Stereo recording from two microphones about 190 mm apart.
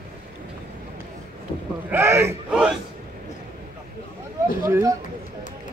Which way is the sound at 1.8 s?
15° right (ahead or behind).